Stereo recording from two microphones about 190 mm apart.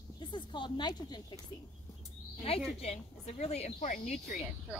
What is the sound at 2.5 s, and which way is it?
Speech, 30° left (ahead or behind).